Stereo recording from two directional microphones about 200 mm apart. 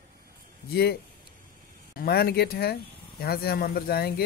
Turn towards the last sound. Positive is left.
turn(degrees=50)  # may be behind; listen again after turning